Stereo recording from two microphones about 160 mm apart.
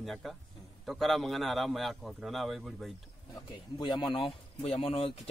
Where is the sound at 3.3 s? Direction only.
25° left (ahead or behind).